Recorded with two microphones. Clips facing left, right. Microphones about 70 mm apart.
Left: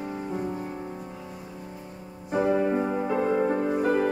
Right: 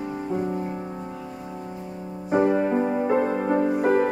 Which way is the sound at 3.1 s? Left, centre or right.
Right.